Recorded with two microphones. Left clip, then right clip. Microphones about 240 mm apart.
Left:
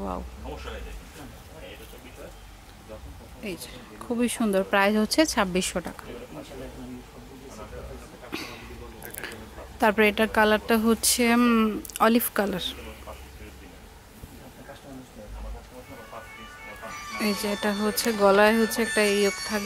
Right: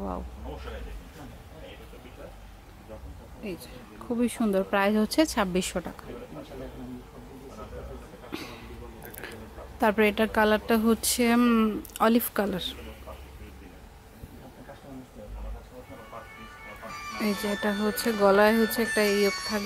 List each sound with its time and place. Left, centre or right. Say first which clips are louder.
3.4 s speech: left 2 dB; centre
8.3 s a sound: left 3 dB; centre
9.0 s speech: left 4 dB; centre
16.9 s speech: left 2 dB; centre